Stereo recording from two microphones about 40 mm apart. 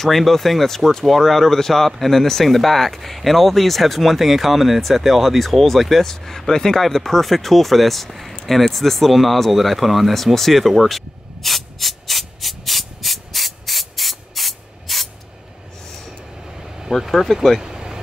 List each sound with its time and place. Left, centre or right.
0.0 s speech: centre
6.8 s a sound: centre
16.5 s vehicle: centre
17.2 s speech: centre
17.6 s vehicle: centre